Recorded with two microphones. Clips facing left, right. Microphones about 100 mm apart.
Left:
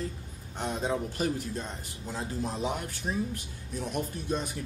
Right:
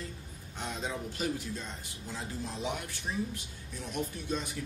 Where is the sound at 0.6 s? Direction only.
45° left (ahead or behind).